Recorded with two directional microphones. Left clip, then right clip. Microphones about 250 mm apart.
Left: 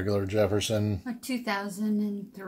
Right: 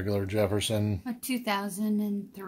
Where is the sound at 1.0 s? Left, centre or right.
Right.